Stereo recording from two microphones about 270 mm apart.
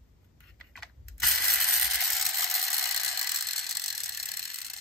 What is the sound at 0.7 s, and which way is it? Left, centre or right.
Mechanisms, centre.